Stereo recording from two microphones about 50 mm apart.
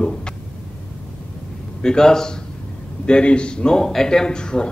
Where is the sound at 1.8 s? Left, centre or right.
Centre.